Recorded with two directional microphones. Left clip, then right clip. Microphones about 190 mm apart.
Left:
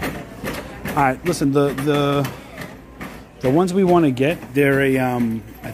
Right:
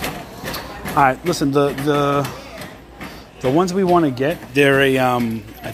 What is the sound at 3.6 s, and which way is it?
Speech, 15° left (ahead or behind).